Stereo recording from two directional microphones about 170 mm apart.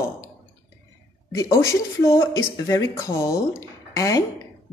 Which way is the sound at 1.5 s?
15° left (ahead or behind).